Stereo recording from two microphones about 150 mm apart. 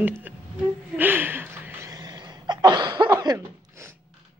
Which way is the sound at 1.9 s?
30° right (ahead or behind).